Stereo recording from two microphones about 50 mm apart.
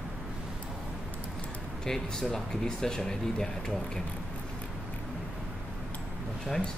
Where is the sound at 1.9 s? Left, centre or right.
Centre.